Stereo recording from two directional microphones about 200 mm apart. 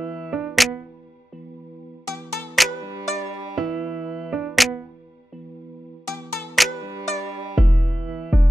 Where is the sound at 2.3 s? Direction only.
Centre (ahead or behind).